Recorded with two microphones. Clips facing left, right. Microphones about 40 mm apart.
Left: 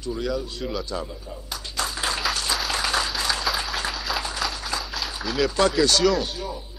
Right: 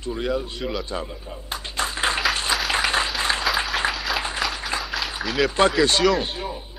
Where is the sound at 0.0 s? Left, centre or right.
Right.